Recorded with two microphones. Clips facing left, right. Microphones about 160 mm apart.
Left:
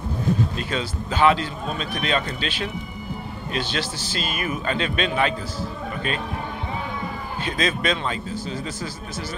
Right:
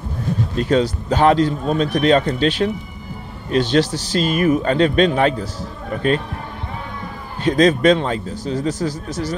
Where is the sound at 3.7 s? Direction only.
35° right (ahead or behind).